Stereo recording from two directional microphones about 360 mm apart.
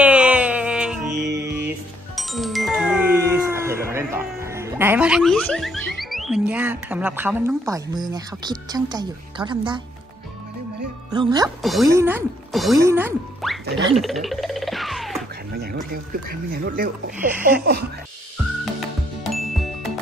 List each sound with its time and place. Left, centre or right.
0.0 s wail: centre
1.1 s music: right
2.1 s music: centre
6.0 s speech: centre
11.1 s speech: centre
11.6 s speech: centre
13.9 s music: centre
15.5 s speech: right
19.2 s music: centre